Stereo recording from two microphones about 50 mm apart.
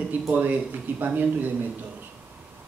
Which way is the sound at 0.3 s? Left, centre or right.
Right.